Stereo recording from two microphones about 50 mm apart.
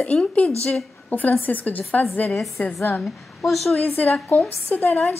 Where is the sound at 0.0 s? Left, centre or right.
Left.